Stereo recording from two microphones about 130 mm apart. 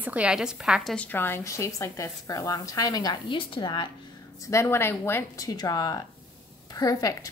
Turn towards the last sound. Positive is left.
turn(degrees=25)  # may be behind; listen again after turning